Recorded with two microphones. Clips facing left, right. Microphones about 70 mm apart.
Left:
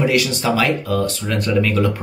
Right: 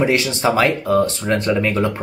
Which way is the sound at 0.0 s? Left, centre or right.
Right.